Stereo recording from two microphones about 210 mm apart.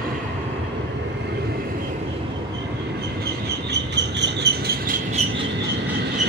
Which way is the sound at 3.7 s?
55° right (ahead or behind).